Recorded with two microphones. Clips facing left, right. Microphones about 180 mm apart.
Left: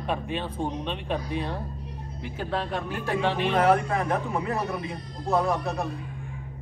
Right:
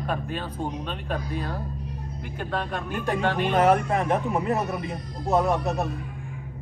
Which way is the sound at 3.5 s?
20° right (ahead or behind).